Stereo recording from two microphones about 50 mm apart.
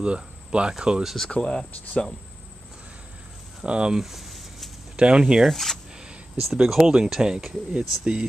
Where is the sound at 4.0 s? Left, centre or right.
Centre.